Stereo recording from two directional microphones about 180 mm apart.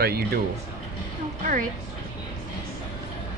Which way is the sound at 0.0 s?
60° right (ahead or behind).